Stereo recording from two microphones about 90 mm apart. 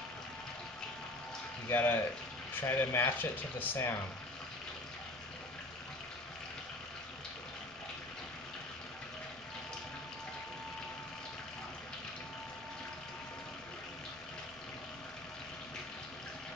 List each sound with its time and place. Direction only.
1.7 s speech: 20° left (ahead or behind)